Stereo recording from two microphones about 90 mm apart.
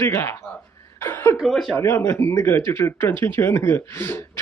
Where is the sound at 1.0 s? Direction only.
25° left (ahead or behind).